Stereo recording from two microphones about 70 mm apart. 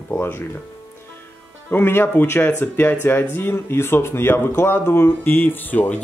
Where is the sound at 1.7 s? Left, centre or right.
Left.